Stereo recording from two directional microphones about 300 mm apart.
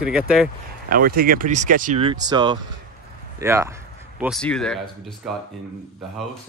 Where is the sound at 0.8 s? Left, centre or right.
Right; by 5.4 s centre.